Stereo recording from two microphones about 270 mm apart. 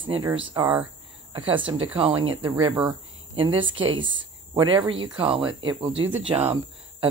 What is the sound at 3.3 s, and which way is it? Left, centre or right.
Speech, centre.